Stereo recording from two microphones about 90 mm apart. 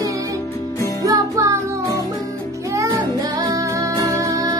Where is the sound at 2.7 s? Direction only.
40° right (ahead or behind).